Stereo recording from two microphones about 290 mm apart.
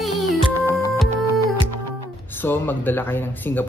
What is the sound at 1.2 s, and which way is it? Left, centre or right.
Music, right.